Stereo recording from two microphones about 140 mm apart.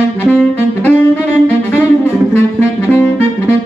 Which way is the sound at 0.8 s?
15° left (ahead or behind).